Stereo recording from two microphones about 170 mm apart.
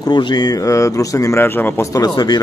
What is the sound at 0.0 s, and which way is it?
A man's voice, 25° left (ahead or behind).